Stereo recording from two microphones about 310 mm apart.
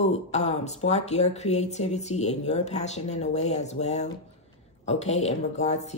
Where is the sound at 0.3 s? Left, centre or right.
Left.